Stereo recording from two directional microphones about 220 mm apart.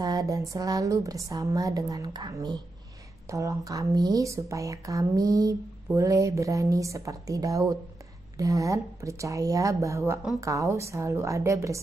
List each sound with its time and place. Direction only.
0.0 s speech: 15° right (ahead or behind)